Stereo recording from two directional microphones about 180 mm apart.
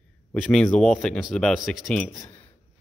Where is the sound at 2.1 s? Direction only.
20° left (ahead or behind).